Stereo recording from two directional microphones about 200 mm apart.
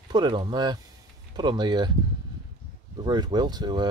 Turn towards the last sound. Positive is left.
turn(degrees=-20)  # may be behind; listen again after turning